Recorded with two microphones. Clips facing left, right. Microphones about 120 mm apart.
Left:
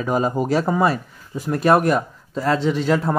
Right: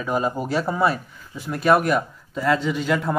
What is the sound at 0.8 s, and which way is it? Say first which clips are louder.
Speech: left 2 dB; 40° left (ahead or behind).